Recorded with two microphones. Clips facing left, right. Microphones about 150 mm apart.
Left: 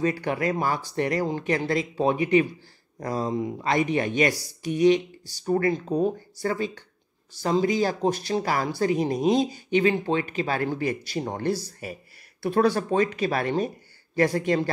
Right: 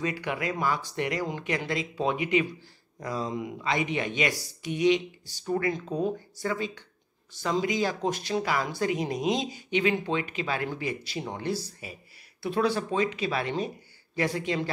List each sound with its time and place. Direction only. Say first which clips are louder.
0.0 s speech: left 6 dB; 40° left (ahead or behind)